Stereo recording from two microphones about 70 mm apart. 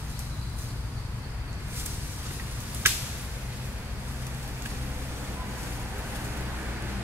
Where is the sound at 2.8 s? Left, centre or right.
Right.